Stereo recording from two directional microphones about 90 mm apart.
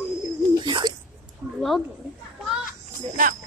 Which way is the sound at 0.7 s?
60° right (ahead or behind).